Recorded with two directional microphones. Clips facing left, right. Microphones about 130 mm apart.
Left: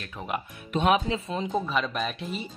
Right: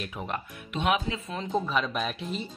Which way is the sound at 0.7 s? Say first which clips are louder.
Left 4 dB; 35° left (ahead or behind).